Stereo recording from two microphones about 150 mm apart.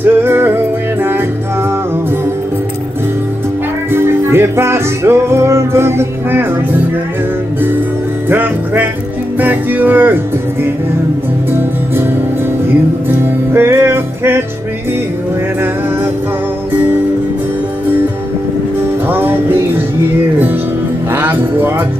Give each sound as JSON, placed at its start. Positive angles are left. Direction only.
{"t": 0.0, "sound": "music", "side_deg": -15}
{"t": 3.9, "sound": "music", "side_deg": -15}
{"t": 8.3, "sound": "music", "side_deg": -15}
{"t": 13.5, "sound": "music", "side_deg": -15}
{"t": 19.0, "sound": "music", "side_deg": -15}
{"t": 21.1, "sound": "music", "side_deg": -15}